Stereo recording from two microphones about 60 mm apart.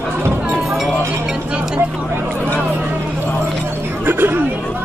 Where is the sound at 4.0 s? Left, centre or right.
Right.